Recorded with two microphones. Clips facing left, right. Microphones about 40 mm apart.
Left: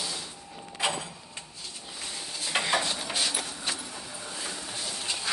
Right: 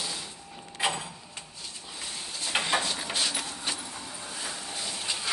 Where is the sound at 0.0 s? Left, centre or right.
Centre.